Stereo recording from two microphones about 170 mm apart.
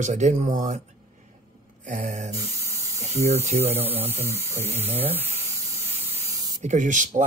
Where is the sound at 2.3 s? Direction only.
15° right (ahead or behind).